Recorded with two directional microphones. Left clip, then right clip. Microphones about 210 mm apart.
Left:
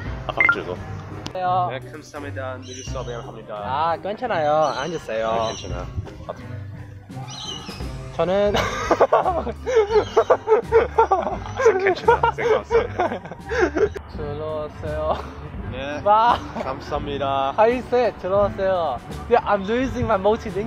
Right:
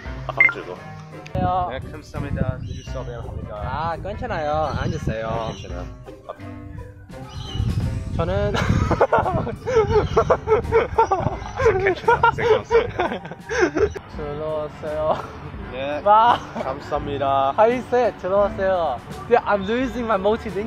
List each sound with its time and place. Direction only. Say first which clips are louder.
0.3 s speech: right 3 dB; 25° left (ahead or behind)
1.3 s speech: left 1 dB; 5° left (ahead or behind)
1.7 s speech: even; 25° left (ahead or behind)
3.6 s speech: left 4 dB; 5° right (ahead or behind)
8.2 s speech: left 4 dB; 5° right (ahead or behind)
14.4 s speech: right 3 dB; 5° left (ahead or behind)
15.7 s speech: right 3 dB; 25° left (ahead or behind)
16.0 s speech: right 2 dB; 5° left (ahead or behind)
16.5 s speech: right 1 dB; 25° left (ahead or behind)
17.6 s speech: even; 5° left (ahead or behind)